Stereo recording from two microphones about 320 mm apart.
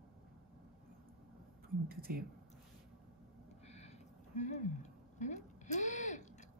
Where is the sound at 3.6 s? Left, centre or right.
Centre.